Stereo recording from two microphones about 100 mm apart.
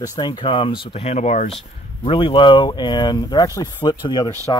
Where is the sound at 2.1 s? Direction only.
60° left (ahead or behind).